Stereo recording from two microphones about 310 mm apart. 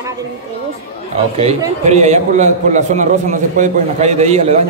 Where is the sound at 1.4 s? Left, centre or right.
Centre.